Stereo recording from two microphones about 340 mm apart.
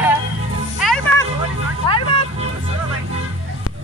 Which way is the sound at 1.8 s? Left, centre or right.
Centre.